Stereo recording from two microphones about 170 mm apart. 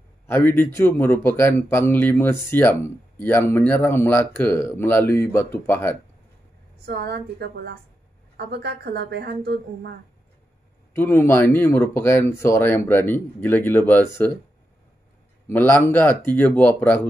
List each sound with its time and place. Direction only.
0.3 s a man's voice: 10° left (ahead or behind)
6.9 s a woman's voice: 70° right (ahead or behind)
11.0 s a man's voice: 15° left (ahead or behind)
15.5 s a man's voice: 10° left (ahead or behind)